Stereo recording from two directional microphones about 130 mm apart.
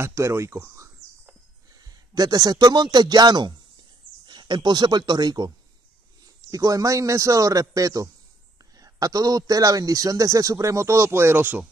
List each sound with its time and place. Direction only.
0.0 s speech: 20° right (ahead or behind)
6.5 s speech: 25° right (ahead or behind)